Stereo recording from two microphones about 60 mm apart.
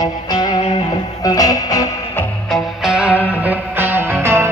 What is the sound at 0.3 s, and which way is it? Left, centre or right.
Music, left.